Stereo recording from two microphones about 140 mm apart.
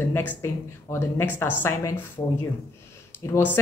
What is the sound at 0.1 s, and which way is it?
A woman's voice, 15° left (ahead or behind).